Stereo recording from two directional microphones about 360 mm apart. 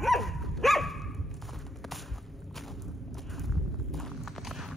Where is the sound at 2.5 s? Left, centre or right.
Centre.